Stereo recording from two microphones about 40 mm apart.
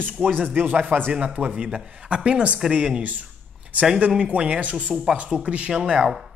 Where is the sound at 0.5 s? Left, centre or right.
Right.